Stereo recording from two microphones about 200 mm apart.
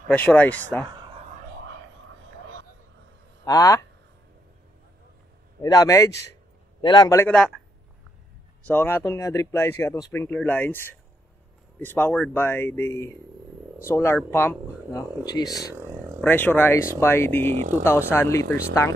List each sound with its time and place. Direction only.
0.3 s speech: 5° left (ahead or behind)
3.4 s speech: 15° left (ahead or behind)
5.6 s speech: 20° left (ahead or behind)
8.6 s speech: 10° left (ahead or behind)
15.7 s a sound: 10° right (ahead or behind)
16.2 s speech: 10° left (ahead or behind)
17.5 s speech: 35° right (ahead or behind)
17.8 s speech: 10° left (ahead or behind)